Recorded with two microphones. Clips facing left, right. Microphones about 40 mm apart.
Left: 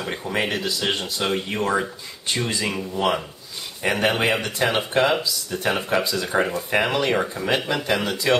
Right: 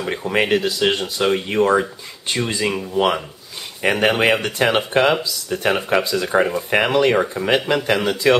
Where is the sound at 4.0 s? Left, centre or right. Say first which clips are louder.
Right 4 dB; right.